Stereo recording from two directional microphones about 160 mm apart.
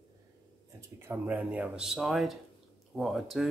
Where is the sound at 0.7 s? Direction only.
15° right (ahead or behind).